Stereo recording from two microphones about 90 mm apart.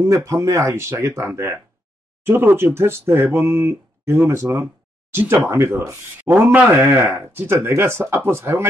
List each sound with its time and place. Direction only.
0.0 s speech: 35° right (ahead or behind)